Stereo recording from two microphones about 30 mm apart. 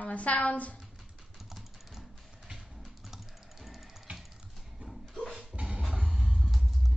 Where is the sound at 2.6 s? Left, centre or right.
Centre.